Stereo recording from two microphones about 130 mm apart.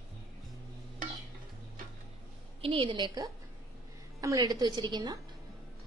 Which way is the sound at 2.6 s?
40° right (ahead or behind).